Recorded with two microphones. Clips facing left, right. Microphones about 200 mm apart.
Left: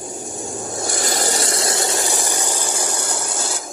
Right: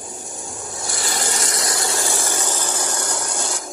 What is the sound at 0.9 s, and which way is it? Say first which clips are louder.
Vehicle: left 3 dB; 40° left (ahead or behind).